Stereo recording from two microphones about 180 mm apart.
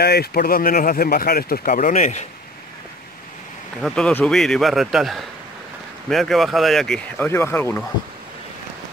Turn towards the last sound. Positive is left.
turn(degrees=10)  # may be behind; listen again after turning